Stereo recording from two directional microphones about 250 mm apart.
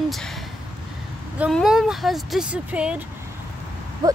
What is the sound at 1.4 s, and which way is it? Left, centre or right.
Speech, centre.